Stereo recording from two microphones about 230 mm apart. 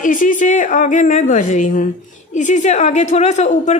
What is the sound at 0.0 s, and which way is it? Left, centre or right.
A woman's voice, left.